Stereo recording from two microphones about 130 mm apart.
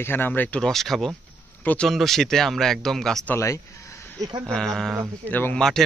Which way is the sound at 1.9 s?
Centre (ahead or behind).